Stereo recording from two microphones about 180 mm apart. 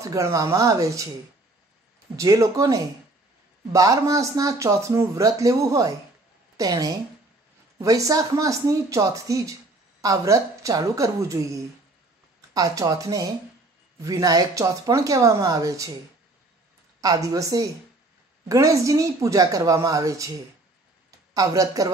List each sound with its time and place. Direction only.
0.0 s speech: 20° right (ahead or behind)
2.1 s a woman's voice: 20° right (ahead or behind)
17.0 s speech: 20° right (ahead or behind)